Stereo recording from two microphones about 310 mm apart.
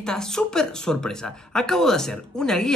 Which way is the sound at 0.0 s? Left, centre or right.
Centre.